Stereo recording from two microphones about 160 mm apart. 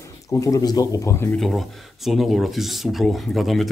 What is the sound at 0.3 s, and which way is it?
Speech, 20° left (ahead or behind).